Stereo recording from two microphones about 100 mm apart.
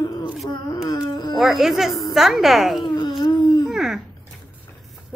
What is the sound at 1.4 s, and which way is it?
A woman's voice, 5° right (ahead or behind).